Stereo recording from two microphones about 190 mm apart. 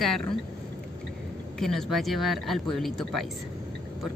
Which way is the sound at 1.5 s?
Centre (ahead or behind).